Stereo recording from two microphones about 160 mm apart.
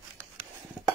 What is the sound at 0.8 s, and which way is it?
Stir, 5° right (ahead or behind).